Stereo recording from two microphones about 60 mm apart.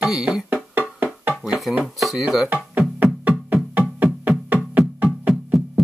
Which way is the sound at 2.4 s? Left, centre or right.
Right.